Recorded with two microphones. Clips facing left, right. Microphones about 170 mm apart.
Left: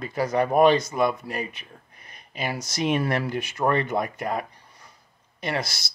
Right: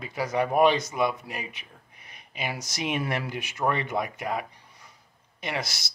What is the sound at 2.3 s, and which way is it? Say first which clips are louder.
Speech: left 3 dB; 40° left (ahead or behind).